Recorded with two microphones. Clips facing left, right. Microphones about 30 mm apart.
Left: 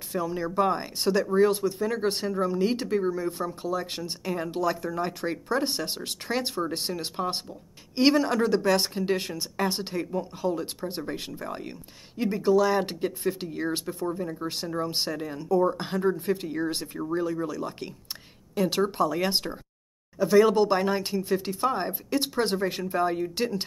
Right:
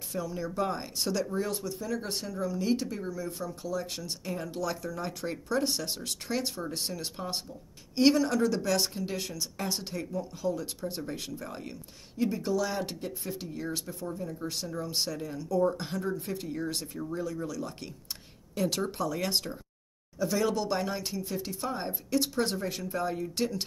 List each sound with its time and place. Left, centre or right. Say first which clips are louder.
0.1 s speech: left 6 dB; left
12.2 s speech: left 7 dB; left
13.2 s speech: left 8 dB; left